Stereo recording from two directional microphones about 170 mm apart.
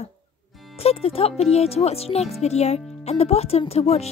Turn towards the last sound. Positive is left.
turn(degrees=35)  # may be behind; listen again after turning